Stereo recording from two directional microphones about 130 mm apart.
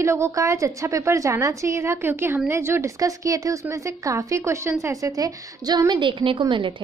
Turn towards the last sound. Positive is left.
turn(degrees=-40)  # may be behind; listen again after turning